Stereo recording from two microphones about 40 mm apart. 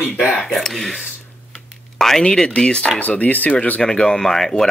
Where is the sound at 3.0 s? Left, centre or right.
Left.